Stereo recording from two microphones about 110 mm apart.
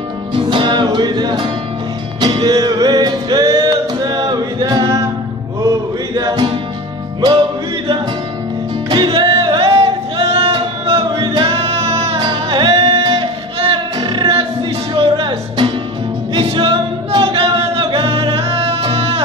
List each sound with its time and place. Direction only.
0.3 s music: 50° right (ahead or behind)
8.8 s music: 45° right (ahead or behind)
11.4 s music: 65° right (ahead or behind)
12.2 s music: 45° right (ahead or behind)
13.1 s music: 55° right (ahead or behind)
15.0 s music: 60° right (ahead or behind)
15.2 s music: 45° right (ahead or behind)
16.3 s music: 55° right (ahead or behind)